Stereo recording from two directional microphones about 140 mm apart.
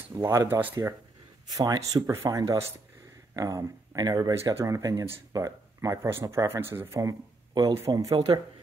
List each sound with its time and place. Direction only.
0.2 s speech: 20° right (ahead or behind)
1.6 s speech: 25° right (ahead or behind)